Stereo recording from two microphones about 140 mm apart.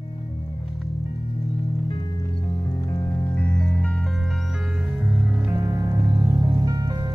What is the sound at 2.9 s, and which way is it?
Music, 15° left (ahead or behind).